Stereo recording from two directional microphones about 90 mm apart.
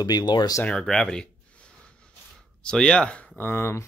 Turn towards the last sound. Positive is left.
turn(degrees=25)  # may be behind; listen again after turning